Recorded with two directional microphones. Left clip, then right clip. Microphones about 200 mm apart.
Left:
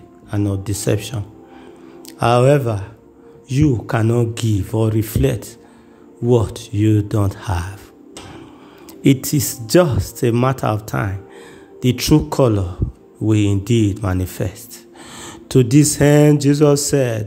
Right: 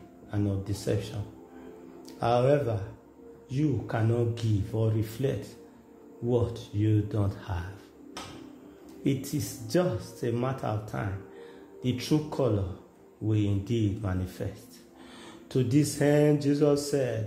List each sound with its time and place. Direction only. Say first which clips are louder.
0.3 s speech: left 10 dB; 40° left (ahead or behind)
9.0 s speech: left 14 dB; 45° left (ahead or behind)